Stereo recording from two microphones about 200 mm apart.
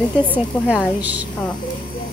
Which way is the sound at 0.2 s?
5° right (ahead or behind).